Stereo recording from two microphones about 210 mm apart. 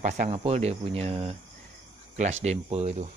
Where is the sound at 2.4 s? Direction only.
30° right (ahead or behind).